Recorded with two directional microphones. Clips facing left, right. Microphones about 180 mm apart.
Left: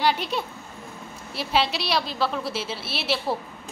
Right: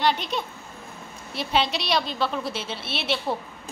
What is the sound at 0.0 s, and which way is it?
A woman's voice, 5° left (ahead or behind).